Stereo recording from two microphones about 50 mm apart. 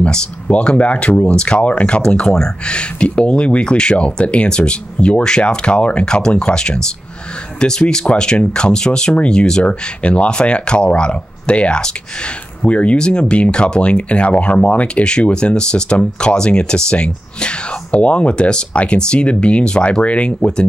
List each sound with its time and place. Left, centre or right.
0.0 s speech: left